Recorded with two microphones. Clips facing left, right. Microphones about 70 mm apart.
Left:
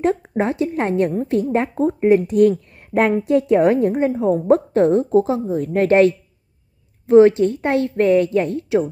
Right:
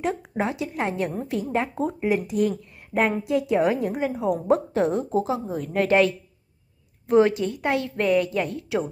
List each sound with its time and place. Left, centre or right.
0.4 s a woman's voice: left
1.8 s a woman's voice: left
2.9 s a woman's voice: left
4.1 s a woman's voice: left